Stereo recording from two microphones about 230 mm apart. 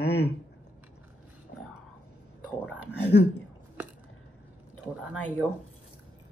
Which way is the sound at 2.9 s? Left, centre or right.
Left.